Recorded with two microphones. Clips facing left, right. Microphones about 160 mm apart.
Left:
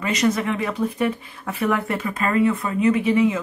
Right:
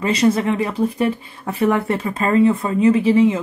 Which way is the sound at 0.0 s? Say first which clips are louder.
Right 4 dB; 30° right (ahead or behind).